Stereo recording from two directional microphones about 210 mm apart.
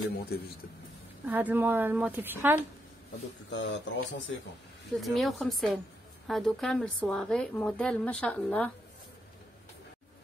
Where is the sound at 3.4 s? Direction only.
60° left (ahead or behind).